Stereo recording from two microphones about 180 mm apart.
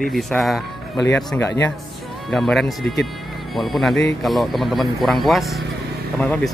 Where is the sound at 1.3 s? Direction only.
15° left (ahead or behind).